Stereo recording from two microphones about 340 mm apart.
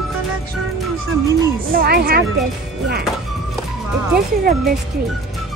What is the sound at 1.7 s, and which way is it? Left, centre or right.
Speech, right.